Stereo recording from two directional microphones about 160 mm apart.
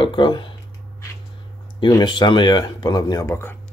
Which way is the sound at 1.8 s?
30° left (ahead or behind).